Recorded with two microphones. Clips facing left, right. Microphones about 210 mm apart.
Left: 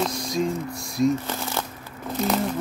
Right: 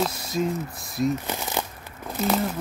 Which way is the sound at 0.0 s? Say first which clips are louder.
Left 1 dB; 5° right (ahead or behind).